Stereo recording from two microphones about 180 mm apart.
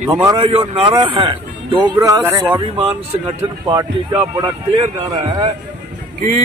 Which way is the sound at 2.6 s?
30° right (ahead or behind).